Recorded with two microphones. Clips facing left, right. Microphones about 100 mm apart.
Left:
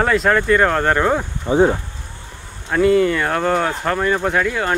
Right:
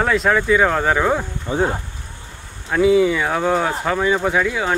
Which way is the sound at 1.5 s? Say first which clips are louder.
Left 6 dB; 20° left (ahead or behind).